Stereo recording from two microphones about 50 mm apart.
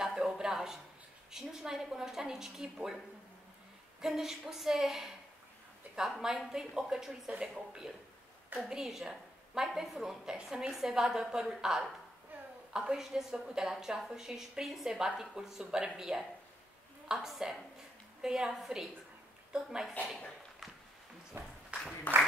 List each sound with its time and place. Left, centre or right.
0.0 s a sound: centre
1.3 s a woman's voice: centre
4.0 s a woman's voice: centre
6.2 s a woman's voice: centre
21.4 s a sound: right
21.7 s applause: right